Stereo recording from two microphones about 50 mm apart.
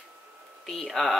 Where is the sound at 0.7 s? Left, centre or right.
Centre.